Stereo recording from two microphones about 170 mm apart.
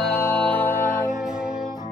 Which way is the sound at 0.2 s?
10° left (ahead or behind).